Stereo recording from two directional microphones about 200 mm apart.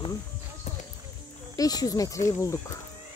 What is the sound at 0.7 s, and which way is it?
Speech, 35° left (ahead or behind).